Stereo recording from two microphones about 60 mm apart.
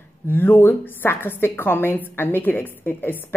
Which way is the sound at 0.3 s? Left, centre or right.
Left.